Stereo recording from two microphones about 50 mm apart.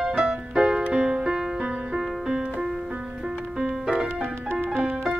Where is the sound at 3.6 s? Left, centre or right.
Centre.